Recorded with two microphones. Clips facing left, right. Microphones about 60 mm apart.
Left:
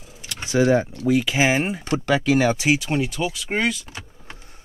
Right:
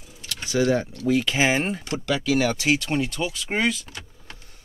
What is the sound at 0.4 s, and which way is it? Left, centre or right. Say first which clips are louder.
Speech: left 4 dB; left.